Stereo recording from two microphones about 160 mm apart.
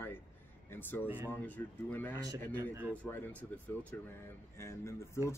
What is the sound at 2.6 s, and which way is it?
Speech, 15° right (ahead or behind).